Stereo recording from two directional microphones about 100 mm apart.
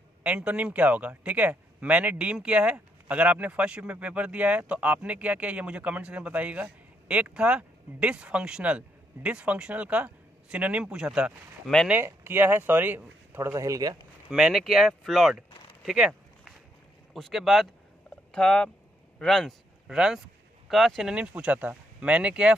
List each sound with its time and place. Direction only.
0.2 s speech: 10° right (ahead or behind)
11.9 s speech: 20° right (ahead or behind)
14.3 s speech: 5° right (ahead or behind)
18.3 s speech: 10° left (ahead or behind)
21.1 s speech: 10° right (ahead or behind)